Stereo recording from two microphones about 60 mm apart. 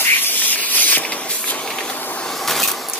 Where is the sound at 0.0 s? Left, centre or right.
Left.